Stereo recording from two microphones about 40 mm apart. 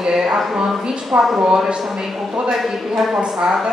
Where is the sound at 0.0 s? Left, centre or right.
Centre.